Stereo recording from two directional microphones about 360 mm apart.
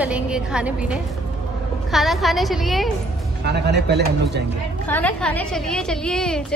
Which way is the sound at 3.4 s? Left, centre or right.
Right.